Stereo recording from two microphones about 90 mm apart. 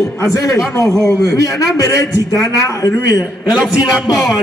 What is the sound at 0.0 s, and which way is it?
A man's voice, 35° left (ahead or behind).